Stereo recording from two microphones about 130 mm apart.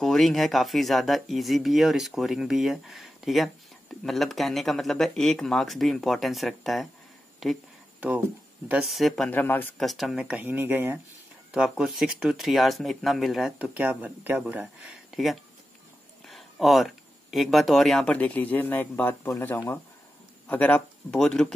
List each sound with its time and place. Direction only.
0.0 s speech: 5° left (ahead or behind)
8.8 s speech: centre (ahead or behind)
9.3 s speech: 15° left (ahead or behind)
9.8 s speech: centre (ahead or behind)
10.4 s speech: 15° right (ahead or behind)
11.5 s speech: centre (ahead or behind)
13.7 s speech: 15° right (ahead or behind); by 21.5 s 5° left (ahead or behind)